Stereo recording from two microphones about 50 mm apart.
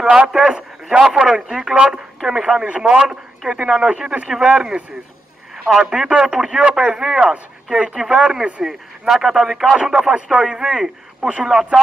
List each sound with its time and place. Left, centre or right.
0.3 s speech: centre
5.9 s speech: centre
9.1 s a man's voice: centre
11.1 s speech: right
11.4 s speech: centre